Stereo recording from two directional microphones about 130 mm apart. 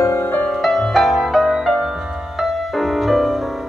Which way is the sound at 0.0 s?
20° left (ahead or behind).